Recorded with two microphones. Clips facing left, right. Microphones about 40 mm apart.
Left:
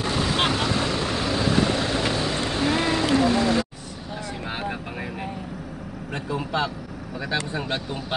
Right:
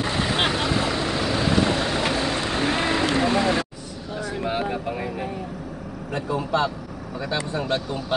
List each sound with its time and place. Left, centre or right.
0.0 s vehicle: centre
3.2 s music: right
4.5 s vehicle: centre
6.3 s speech: centre